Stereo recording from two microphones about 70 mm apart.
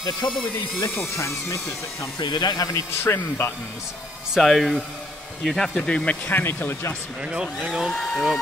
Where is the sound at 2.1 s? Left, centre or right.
Left.